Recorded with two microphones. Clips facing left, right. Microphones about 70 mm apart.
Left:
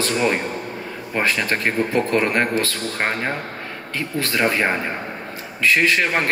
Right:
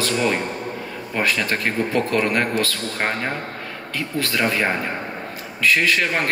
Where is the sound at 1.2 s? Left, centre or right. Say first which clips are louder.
Left 1 dB; left.